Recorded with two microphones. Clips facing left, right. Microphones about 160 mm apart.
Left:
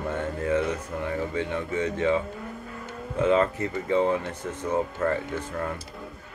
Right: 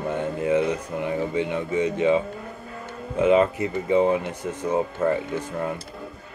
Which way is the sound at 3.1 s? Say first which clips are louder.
Right 4 dB; 15° right (ahead or behind).